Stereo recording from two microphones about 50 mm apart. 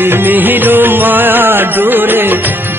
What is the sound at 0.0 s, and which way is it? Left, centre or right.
Music, right.